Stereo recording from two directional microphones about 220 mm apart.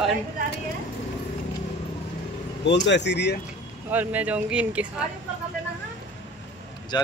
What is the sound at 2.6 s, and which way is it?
Speech, 55° left (ahead or behind).